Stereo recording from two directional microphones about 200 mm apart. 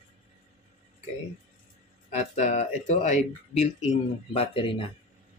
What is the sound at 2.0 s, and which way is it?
Speech, 35° left (ahead or behind).